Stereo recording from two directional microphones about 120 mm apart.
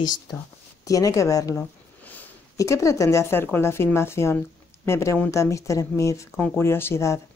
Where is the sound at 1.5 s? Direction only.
15° left (ahead or behind).